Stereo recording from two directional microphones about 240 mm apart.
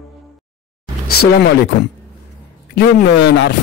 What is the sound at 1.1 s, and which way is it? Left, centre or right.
Speech, left.